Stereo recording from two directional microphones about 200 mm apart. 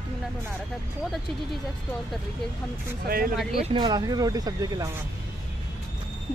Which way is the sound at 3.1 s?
45° right (ahead or behind).